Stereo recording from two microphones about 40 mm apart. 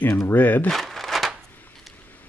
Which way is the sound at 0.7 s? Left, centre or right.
Centre.